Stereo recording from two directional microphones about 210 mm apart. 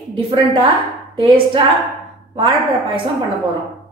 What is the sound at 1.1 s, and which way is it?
Speech, 25° right (ahead or behind).